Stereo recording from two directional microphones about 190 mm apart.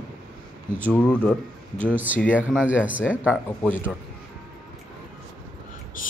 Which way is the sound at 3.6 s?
5° left (ahead or behind).